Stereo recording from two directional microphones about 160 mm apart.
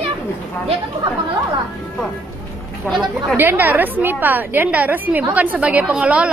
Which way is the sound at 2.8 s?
Centre (ahead or behind).